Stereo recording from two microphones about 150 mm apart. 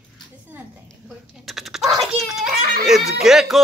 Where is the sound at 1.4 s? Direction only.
Centre (ahead or behind).